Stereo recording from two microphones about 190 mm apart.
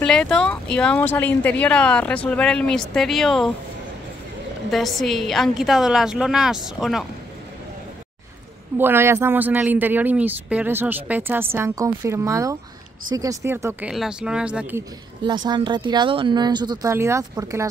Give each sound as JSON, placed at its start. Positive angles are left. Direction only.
{"t": 0.0, "sound": "speech", "side_deg": 5}
{"t": 4.6, "sound": "speech", "side_deg": 0}
{"t": 8.7, "sound": "speech", "side_deg": -10}
{"t": 15.2, "sound": "speech", "side_deg": -25}